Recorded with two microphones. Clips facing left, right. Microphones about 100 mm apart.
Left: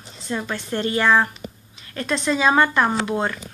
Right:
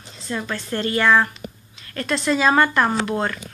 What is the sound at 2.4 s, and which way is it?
A woman's voice, 10° left (ahead or behind).